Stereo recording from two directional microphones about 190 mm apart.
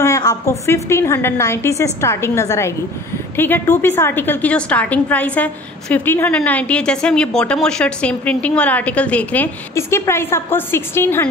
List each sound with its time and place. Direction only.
0.0 s a woman's voice: 15° left (ahead or behind)